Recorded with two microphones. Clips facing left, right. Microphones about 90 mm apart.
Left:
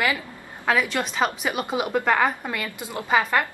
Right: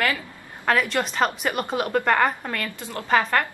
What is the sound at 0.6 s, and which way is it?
A woman's voice, 5° left (ahead or behind).